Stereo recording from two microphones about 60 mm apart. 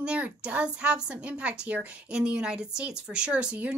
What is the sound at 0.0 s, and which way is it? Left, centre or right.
A woman's voice, centre.